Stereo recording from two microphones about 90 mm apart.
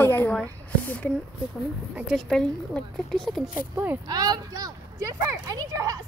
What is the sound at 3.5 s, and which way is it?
Speech, 20° right (ahead or behind).